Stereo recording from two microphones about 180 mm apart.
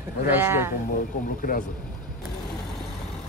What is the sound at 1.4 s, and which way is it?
Speech, 50° left (ahead or behind).